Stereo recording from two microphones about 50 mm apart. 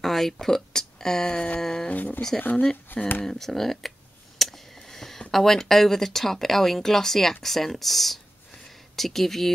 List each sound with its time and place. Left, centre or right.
0.0 s speech: centre
0.7 s a sound: centre
1.6 s speech: centre
1.9 s speech: left
2.5 s speech: left
3.3 s speech: centre
4.4 s a sound: centre
5.3 s speech: centre